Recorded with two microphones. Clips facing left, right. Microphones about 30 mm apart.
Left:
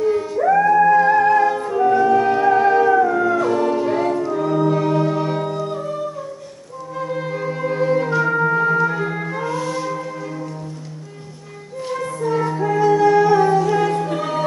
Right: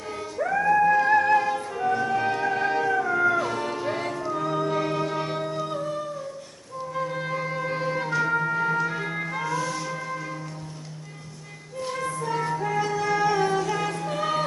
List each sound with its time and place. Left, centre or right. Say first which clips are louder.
0.0 s music: left 12 dB; centre
3.2 s music: left 6 dB; centre
4.1 s music: left 8 dB; centre
7.0 s music: left 5 dB; centre
9.5 s music: left 5 dB; centre
11.9 s music: left 7 dB; centre